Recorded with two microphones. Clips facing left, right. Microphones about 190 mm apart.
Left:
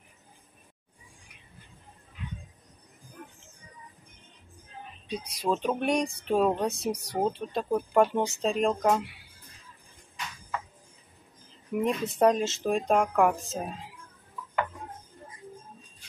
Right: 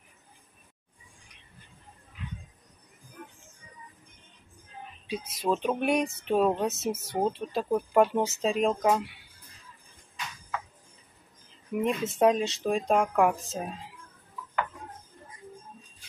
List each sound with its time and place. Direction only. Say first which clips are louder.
5.0 s speech: even; centre (ahead or behind)
11.8 s speech: even; centre (ahead or behind)